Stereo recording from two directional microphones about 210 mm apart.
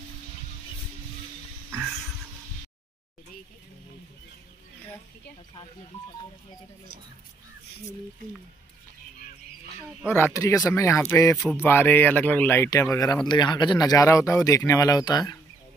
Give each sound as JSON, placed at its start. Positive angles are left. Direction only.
{"t": 10.0, "sound": "speech", "side_deg": 10}